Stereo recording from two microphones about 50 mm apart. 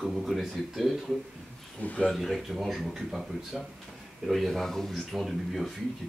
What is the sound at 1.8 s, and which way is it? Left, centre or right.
Speech, left.